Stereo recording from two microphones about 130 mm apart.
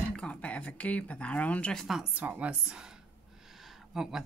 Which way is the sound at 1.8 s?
5° right (ahead or behind).